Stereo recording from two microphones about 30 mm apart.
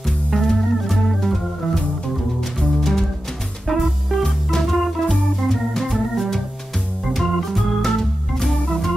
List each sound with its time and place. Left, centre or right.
0.3 s music: centre
3.6 s music: centre
4.2 s organ: centre
5.9 s organ: centre